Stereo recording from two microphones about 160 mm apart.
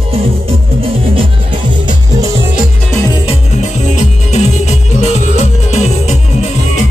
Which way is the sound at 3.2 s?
40° left (ahead or behind).